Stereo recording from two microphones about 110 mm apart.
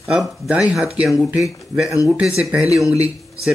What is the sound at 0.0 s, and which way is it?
Speech, 5° right (ahead or behind).